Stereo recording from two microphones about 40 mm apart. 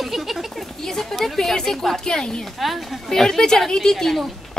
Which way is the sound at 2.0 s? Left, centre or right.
Centre.